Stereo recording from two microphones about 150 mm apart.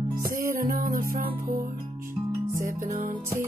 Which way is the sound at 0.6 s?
75° right (ahead or behind).